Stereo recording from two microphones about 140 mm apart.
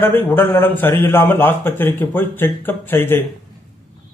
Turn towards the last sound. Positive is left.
turn(degrees=15)  # may be behind; listen again after turning